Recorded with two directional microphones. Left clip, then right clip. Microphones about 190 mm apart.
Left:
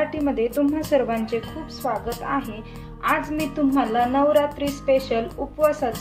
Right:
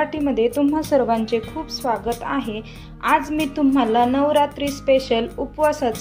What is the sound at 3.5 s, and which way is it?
A woman's voice, 30° right (ahead or behind).